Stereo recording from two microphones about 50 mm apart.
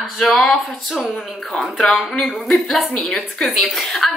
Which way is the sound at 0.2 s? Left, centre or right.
Centre.